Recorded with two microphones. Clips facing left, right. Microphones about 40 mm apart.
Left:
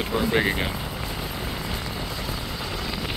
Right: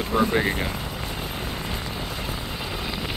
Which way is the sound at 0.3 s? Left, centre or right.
Left.